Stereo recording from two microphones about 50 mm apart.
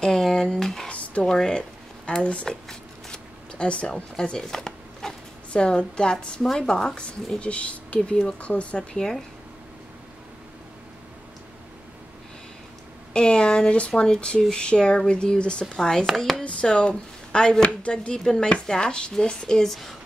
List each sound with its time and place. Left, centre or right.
0.0 s speech: centre
0.8 s a sound: left
1.2 s speech: centre
2.4 s shuffling cards: centre
4.4 s a sound: centre
5.5 s speech: centre
6.4 s a woman's voice: centre
7.3 s speech: left
13.1 s a woman's voice: centre